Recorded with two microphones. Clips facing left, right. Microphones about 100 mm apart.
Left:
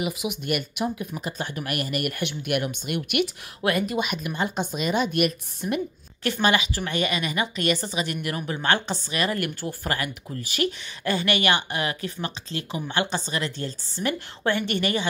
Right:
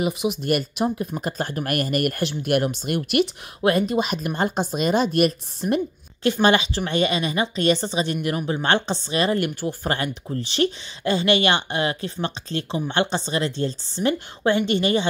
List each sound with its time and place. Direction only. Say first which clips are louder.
0.0 s speech: right 5 dB; 30° right (ahead or behind)
1.2 s speech: right 4 dB; 45° right (ahead or behind); by 15.0 s 25° right (ahead or behind)